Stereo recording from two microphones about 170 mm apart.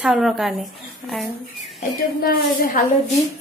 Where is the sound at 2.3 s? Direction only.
60° left (ahead or behind).